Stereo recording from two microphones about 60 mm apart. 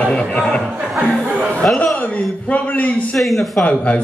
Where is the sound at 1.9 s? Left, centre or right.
Left.